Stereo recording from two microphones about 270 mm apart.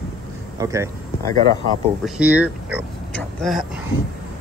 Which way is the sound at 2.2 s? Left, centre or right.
Centre.